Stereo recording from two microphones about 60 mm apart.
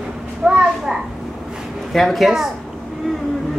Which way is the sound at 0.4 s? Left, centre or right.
Centre.